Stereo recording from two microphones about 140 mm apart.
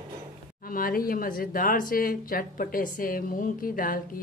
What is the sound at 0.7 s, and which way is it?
Speech, 90° left.